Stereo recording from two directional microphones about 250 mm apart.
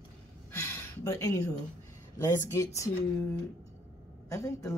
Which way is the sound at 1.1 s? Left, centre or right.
Centre.